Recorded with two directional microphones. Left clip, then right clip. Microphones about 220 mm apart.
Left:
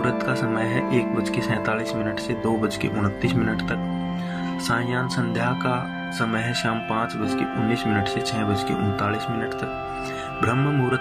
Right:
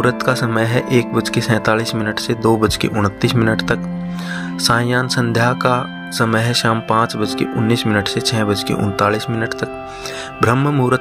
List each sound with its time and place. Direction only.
0.0 s speech: 50° right (ahead or behind)
10.4 s speech: 45° right (ahead or behind)